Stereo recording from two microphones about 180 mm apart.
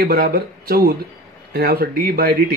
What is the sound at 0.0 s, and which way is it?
Speech, 55° right (ahead or behind).